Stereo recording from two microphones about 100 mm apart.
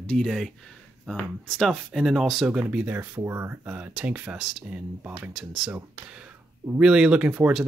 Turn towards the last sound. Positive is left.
turn(degrees=-15)  # may be behind; listen again after turning